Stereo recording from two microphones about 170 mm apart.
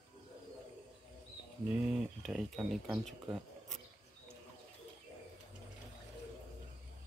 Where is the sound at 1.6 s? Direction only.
5° right (ahead or behind).